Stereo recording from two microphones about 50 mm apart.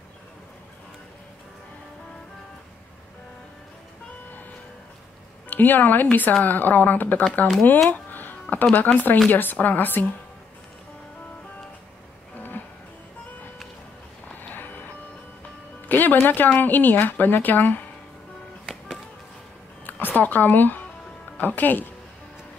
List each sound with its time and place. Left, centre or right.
5.5 s a woman's voice: left
7.9 s a sound: left
8.7 s a woman's voice: left
12.4 s music: left
15.9 s music: left
16.5 s a woman's voice: left
19.9 s a woman's voice: left